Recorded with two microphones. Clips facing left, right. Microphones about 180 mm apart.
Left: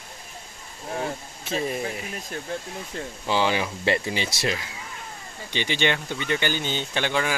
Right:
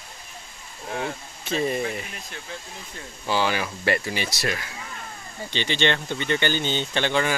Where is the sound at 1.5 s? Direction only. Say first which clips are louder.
Right 2 dB; centre (ahead or behind).